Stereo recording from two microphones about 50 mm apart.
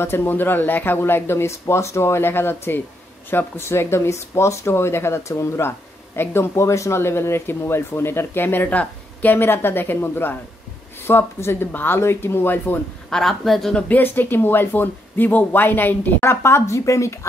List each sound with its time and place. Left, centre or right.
0.0 s speech: left
7.0 s speech: left
8.6 s speech: left
13.1 s speech: centre
13.8 s speech: left
16.3 s speech: left